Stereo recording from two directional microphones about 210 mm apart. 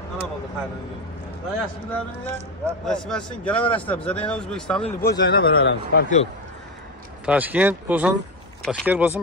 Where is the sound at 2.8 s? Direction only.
5° left (ahead or behind).